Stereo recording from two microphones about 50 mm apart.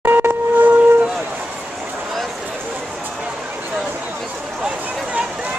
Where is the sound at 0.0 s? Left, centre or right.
Right.